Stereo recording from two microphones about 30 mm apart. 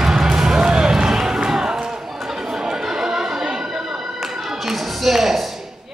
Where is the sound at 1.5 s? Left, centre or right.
Centre.